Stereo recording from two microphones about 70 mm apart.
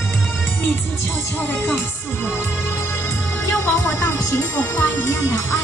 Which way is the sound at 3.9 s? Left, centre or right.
Left.